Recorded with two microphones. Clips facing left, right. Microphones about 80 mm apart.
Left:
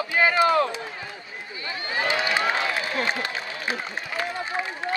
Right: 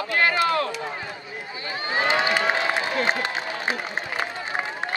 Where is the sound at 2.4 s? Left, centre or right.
Right.